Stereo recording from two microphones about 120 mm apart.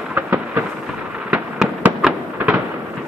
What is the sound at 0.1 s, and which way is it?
Thunder, 15° right (ahead or behind).